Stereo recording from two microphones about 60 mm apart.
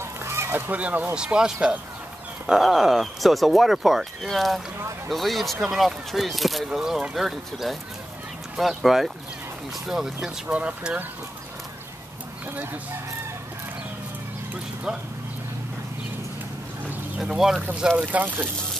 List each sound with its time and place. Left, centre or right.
0.0 s fowl: right
0.7 s speech: right
1.1 s speech: centre
4.7 s a sound: right
5.1 s speech: centre
10.5 s speech: right
17.2 s speech: centre
17.9 s speech: right